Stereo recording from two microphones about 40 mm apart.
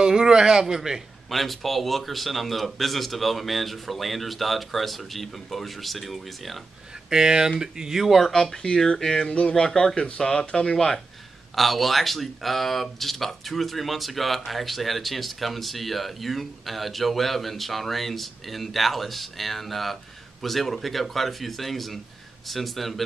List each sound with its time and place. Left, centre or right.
0.0 s speech: centre
1.3 s speech: centre
7.1 s speech: centre
8.6 s speech: centre
9.2 s speech: left
9.6 s speech: centre
11.5 s speech: centre